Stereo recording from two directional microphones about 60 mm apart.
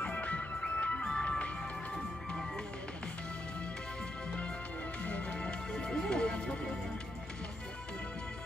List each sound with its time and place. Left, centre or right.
0.0 s music: left
5.0 s music: left